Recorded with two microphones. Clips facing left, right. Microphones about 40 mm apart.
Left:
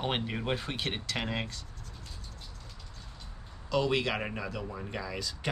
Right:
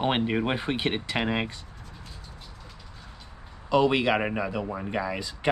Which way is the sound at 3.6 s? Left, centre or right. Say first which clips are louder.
Right 7 dB; right.